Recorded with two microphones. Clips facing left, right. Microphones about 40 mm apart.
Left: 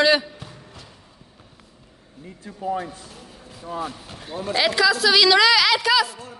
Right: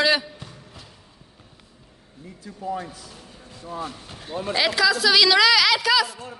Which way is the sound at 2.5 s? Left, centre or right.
Left.